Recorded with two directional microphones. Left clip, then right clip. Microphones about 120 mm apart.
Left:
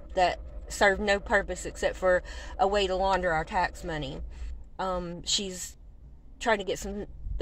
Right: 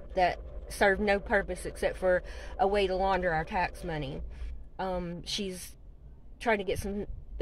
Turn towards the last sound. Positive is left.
turn(degrees=-20)  # may be behind; listen again after turning